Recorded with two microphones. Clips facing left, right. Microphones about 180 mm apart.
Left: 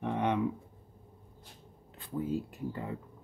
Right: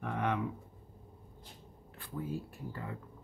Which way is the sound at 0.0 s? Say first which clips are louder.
Left 4 dB; 20° left (ahead or behind).